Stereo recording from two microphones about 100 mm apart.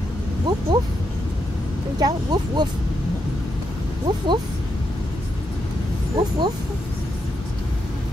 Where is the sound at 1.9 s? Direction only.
45° right (ahead or behind).